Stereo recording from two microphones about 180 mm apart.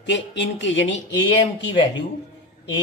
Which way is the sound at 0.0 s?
85° left.